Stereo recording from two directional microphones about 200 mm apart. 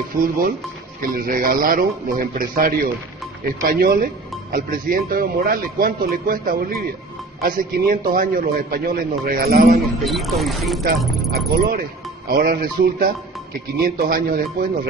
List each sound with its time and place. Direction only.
0.1 s speech: 45° right (ahead or behind)
9.9 s speech: centre (ahead or behind)
11.3 s speech: 50° right (ahead or behind)